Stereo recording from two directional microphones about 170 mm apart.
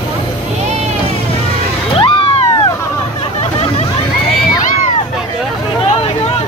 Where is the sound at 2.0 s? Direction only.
30° left (ahead or behind).